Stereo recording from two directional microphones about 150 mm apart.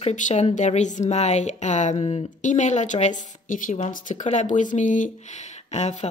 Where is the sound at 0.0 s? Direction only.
50° left (ahead or behind).